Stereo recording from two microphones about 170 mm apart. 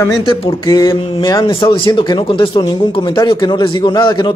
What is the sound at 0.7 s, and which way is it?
A man's voice, 20° left (ahead or behind).